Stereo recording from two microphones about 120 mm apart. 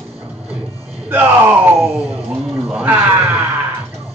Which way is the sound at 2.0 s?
55° right (ahead or behind).